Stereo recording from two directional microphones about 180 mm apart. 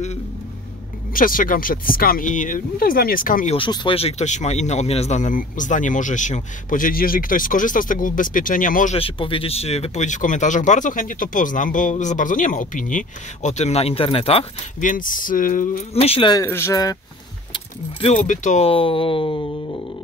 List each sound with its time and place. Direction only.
1.1 s speech: 50° left (ahead or behind)
3.5 s speech: 25° left (ahead or behind); by 8.9 s 50° left (ahead or behind)
8.9 s speech: 30° left (ahead or behind)
14.8 s speech: 45° left (ahead or behind)
15.9 s speech: 35° left (ahead or behind)
16.4 s speech: 15° left (ahead or behind)
18.0 s speech: 45° left (ahead or behind); by 19.8 s 30° left (ahead or behind)